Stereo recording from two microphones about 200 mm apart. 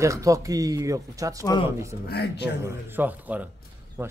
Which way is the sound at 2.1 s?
55° left (ahead or behind).